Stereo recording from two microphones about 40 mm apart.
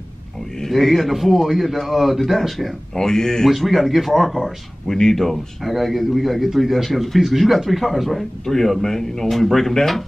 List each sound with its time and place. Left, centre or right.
0.7 s speech: centre
3.4 s speech: centre
4.8 s speech: centre